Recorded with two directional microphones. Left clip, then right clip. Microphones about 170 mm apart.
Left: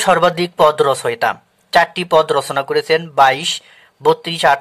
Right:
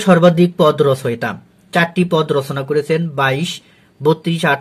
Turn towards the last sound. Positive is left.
turn(degrees=35)  # may be behind; listen again after turning